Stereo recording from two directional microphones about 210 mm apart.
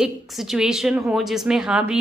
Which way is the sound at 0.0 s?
Centre (ahead or behind).